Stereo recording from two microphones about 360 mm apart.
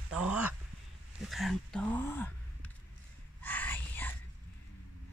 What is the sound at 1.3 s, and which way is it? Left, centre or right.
Speech, centre.